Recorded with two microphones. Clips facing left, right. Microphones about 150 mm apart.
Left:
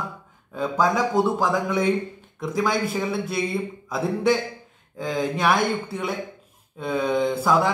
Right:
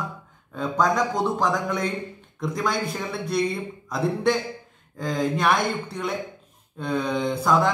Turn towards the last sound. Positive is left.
turn(degrees=5)  # may be behind; listen again after turning